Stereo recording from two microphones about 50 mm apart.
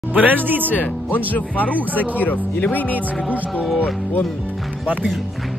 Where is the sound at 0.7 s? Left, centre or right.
Left.